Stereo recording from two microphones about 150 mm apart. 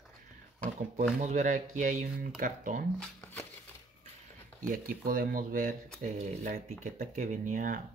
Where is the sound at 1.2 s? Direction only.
55° right (ahead or behind).